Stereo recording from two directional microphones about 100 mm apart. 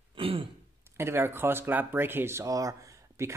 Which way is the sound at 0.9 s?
25° right (ahead or behind).